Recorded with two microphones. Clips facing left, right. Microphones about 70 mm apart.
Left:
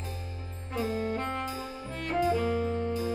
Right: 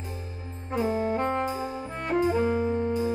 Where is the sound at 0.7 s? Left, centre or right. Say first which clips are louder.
Right 5 dB; right.